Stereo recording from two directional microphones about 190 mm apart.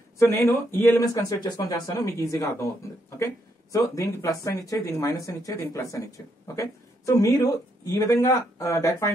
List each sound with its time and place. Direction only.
0.2 s speech: 15° left (ahead or behind)
3.7 s speech: 15° left (ahead or behind)